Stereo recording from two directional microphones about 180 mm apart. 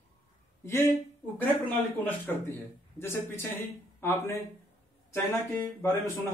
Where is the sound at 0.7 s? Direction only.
10° left (ahead or behind).